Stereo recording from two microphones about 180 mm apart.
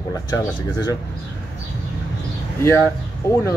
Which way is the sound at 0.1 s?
20° left (ahead or behind).